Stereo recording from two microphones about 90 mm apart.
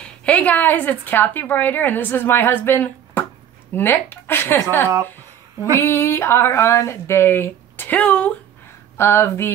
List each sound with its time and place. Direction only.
0.0 s speech: 15° left (ahead or behind)
8.9 s speech: 30° left (ahead or behind)